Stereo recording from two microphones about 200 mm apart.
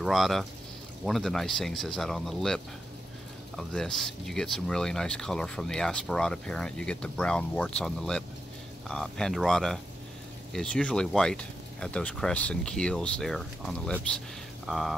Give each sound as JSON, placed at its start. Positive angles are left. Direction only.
{"t": 0.0, "sound": "speech", "side_deg": 0}